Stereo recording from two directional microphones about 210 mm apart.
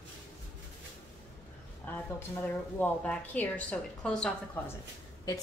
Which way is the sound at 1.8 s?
10° left (ahead or behind).